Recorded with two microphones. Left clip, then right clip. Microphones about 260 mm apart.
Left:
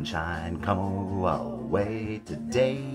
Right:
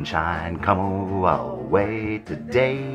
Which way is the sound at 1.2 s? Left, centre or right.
Centre.